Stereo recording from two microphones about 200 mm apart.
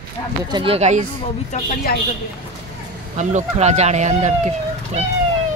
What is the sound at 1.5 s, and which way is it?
Speech, 40° left (ahead or behind).